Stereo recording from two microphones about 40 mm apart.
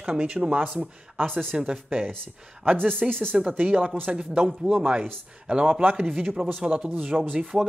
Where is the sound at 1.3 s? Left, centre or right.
Centre.